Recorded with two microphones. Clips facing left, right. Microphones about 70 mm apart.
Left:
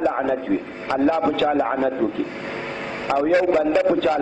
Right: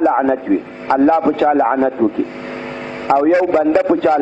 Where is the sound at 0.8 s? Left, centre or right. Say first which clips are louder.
Right 7 dB; right.